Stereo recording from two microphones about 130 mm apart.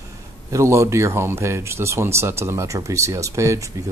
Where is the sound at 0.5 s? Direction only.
20° right (ahead or behind).